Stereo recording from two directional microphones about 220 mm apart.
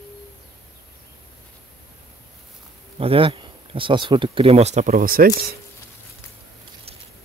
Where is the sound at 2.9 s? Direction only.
25° right (ahead or behind); by 5.5 s 45° right (ahead or behind).